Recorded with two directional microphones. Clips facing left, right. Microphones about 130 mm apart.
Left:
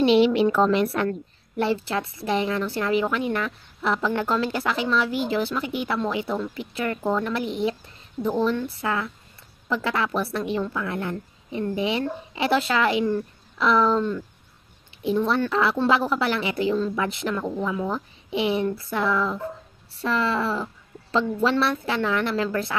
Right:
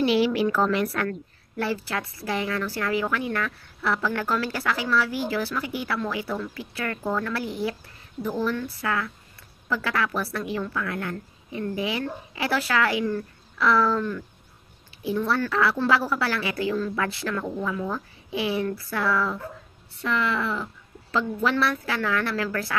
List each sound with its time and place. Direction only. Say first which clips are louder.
0.0 s a woman's voice: left 4 dB; 25° left (ahead or behind)